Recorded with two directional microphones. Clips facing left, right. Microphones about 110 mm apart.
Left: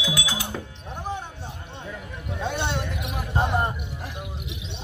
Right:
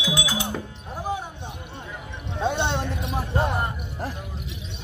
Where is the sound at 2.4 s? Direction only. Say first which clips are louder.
Right 4 dB; 20° right (ahead or behind).